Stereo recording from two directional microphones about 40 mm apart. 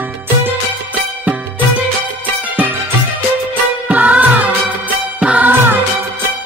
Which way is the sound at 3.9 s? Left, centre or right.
Right.